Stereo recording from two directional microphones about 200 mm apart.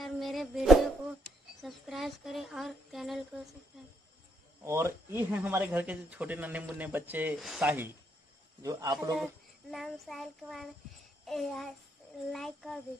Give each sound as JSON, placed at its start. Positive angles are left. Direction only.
{"t": 0.0, "sound": "music", "side_deg": 0}
{"t": 1.6, "sound": "speech", "side_deg": 0}
{"t": 4.6, "sound": "speech", "side_deg": -15}
{"t": 8.6, "sound": "a man's voice", "side_deg": -20}
{"t": 9.2, "sound": "speech", "side_deg": 0}